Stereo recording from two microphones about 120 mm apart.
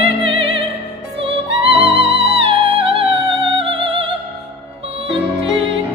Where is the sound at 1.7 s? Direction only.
55° right (ahead or behind).